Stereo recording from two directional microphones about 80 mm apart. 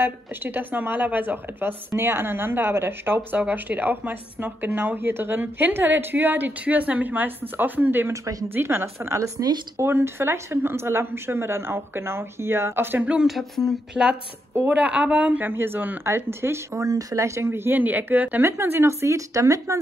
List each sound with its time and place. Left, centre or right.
0.0 s speech: right
8.1 s speech: right
8.5 s speech: right
13.1 s speech: centre
14.5 s speech: right